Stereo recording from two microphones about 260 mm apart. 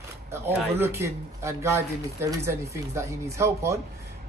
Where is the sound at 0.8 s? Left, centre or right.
Centre.